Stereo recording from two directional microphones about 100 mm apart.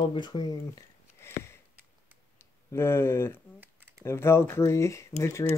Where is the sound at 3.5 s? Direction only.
20° right (ahead or behind).